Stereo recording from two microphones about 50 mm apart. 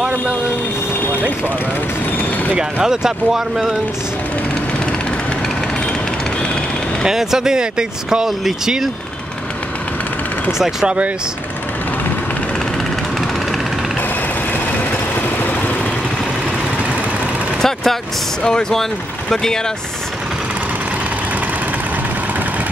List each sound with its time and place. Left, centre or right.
2.5 s speech: centre
7.1 s speech: centre
15.1 s vehicle: left
17.6 s vehicle: centre
18.4 s speech: centre